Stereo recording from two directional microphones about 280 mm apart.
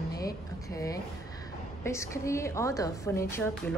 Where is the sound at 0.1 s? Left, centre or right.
Centre.